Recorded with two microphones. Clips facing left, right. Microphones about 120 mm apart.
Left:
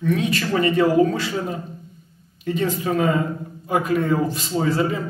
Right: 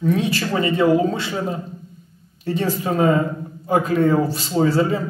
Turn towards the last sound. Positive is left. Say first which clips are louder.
# right 3 dB
turn(degrees=-30)  # may be behind; listen again after turning